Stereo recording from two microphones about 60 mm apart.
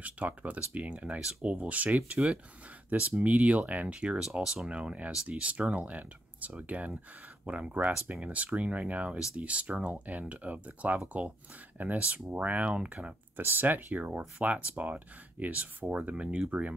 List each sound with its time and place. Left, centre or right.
0.0 s speech: right
4.2 s speech: centre
4.6 s speech: centre
13.4 s speech: right